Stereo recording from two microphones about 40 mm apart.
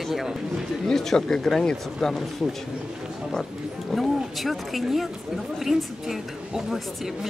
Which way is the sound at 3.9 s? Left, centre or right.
Centre.